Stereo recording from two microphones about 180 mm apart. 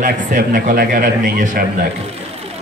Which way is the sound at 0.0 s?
50° right (ahead or behind).